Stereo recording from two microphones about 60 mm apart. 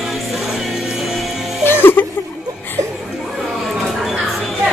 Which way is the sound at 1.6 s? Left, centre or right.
Left.